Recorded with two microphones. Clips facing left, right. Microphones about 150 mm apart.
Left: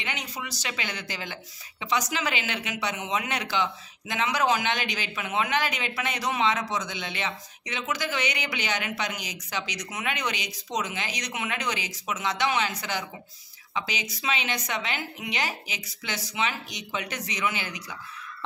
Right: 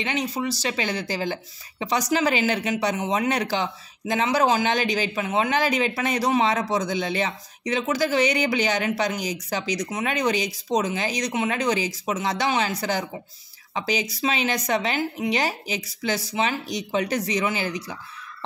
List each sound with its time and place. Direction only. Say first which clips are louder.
0.0 s speech: right 9 dB; 30° right (ahead or behind)